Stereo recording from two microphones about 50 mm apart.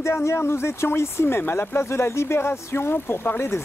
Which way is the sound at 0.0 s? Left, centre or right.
Left.